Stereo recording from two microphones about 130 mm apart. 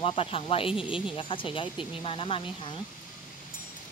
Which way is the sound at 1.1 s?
40° left (ahead or behind).